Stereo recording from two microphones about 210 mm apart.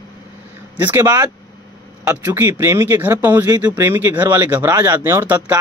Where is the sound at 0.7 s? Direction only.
10° right (ahead or behind).